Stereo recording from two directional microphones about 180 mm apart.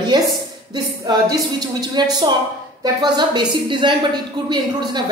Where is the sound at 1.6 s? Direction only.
20° right (ahead or behind).